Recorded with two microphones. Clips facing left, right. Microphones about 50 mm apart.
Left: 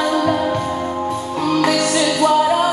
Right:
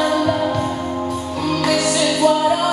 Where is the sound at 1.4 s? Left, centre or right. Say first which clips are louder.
Left 3 dB; centre.